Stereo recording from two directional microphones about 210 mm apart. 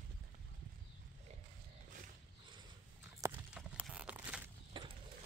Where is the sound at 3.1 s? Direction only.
10° right (ahead or behind).